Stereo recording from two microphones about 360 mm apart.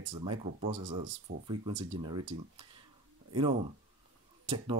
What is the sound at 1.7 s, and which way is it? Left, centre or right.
Speech, right.